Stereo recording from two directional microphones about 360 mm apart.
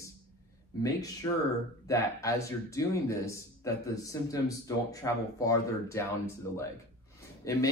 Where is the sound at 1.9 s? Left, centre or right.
Centre.